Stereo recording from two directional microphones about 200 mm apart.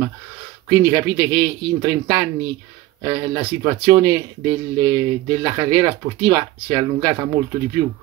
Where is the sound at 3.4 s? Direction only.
20° right (ahead or behind).